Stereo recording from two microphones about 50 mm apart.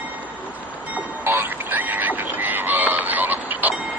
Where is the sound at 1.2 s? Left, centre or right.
Right.